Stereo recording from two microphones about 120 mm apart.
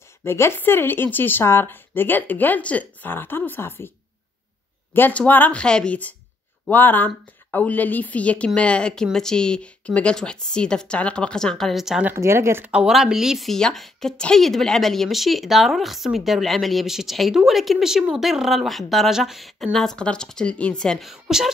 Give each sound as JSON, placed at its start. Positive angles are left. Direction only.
{"t": 0.2, "sound": "speech", "side_deg": 20}
{"t": 4.9, "sound": "speech", "side_deg": 15}
{"t": 12.1, "sound": "speech", "side_deg": -20}
{"t": 12.7, "sound": "a woman's voice", "side_deg": -5}